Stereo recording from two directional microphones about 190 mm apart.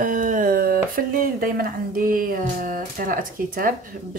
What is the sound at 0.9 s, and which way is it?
Speech, 50° right (ahead or behind).